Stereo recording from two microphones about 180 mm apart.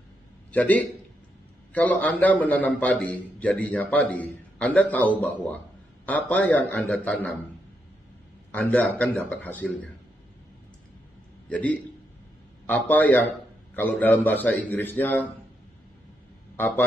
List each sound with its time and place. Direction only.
0.5 s a man's voice: 10° left (ahead or behind)
8.5 s a man's voice: 10° left (ahead or behind)
11.4 s a man's voice: 5° left (ahead or behind)
16.5 s speech: 10° left (ahead or behind)